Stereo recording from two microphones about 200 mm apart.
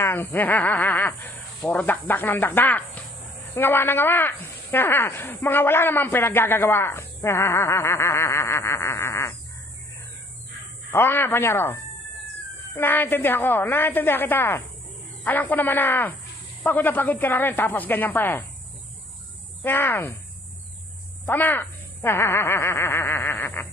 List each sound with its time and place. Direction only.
0.0 s speech: 10° left (ahead or behind)
10.9 s speech: 10° left (ahead or behind)
19.6 s speech: 10° left (ahead or behind)
21.3 s speech: 10° left (ahead or behind)